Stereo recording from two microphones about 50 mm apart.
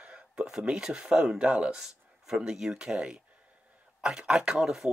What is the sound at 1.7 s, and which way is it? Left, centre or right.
Speech, centre.